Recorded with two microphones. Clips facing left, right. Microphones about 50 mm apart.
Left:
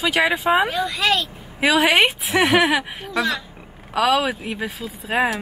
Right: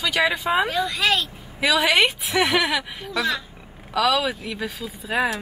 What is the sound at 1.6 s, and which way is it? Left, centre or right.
A woman's voice, left.